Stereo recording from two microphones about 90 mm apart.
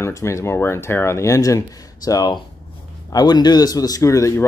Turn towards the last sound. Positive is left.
turn(degrees=35)  # may be behind; listen again after turning